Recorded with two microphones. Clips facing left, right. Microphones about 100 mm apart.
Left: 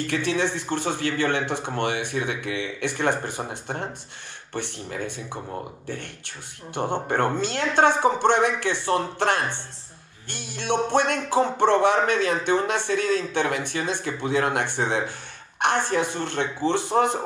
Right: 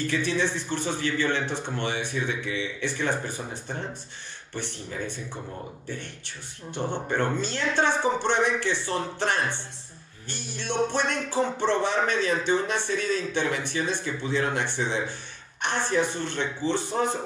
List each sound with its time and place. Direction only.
0.0 s speech: 60° left (ahead or behind)
6.7 s speech: 50° left (ahead or behind)